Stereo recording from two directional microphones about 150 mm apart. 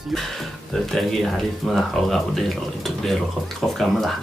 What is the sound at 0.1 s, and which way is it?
Speech, centre (ahead or behind).